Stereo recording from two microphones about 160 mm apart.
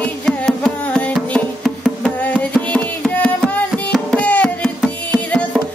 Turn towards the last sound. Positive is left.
turn(degrees=10)  # may be behind; listen again after turning